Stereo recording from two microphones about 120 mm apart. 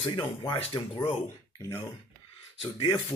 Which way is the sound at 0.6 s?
45° left (ahead or behind).